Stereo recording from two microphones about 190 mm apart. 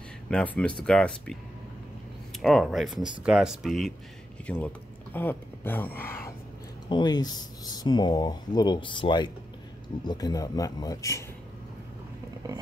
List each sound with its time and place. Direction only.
0.3 s speech: 5° left (ahead or behind)
2.4 s speech: centre (ahead or behind)
6.9 s speech: 20° left (ahead or behind)